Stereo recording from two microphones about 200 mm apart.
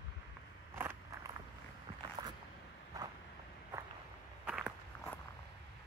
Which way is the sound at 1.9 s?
25° right (ahead or behind).